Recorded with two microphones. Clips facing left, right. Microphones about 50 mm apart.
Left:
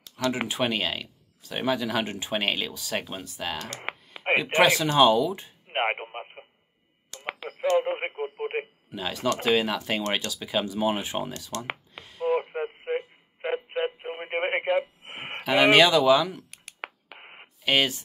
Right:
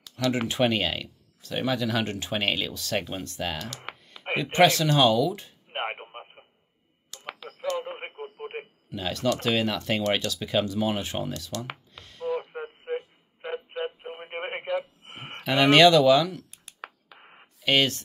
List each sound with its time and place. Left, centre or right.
0.5 s speech: centre
3.9 s a sound: left
4.4 s speech: centre
5.7 s radio: left
8.9 s speech: centre
12.0 s a sound: centre
12.4 s radio: left
15.4 s speech: centre
16.4 s a sound: left
17.6 s speech: centre